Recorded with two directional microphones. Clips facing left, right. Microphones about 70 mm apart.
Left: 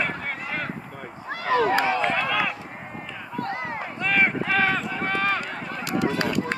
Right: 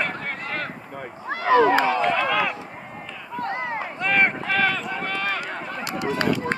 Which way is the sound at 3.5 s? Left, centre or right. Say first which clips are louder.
Right 2 dB; right.